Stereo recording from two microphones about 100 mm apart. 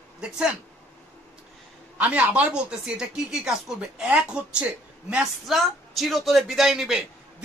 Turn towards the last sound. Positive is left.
turn(degrees=-5)  # may be behind; listen again after turning